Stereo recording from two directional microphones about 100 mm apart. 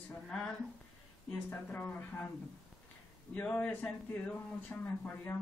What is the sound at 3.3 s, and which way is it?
A man's voice, 15° left (ahead or behind).